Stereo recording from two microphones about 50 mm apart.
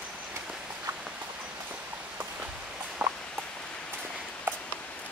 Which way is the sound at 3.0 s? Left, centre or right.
Right.